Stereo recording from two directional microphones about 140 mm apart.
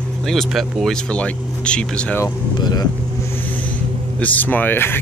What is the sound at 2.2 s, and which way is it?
Speech, 30° left (ahead or behind).